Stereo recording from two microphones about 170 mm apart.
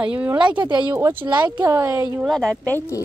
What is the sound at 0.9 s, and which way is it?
Speech, 15° right (ahead or behind).